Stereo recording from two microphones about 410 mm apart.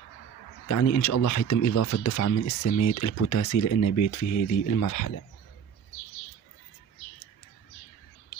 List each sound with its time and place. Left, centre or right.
0.7 s speech: left